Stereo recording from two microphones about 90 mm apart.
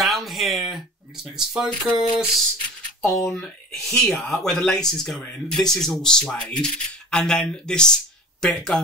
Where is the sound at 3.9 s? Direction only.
5° left (ahead or behind).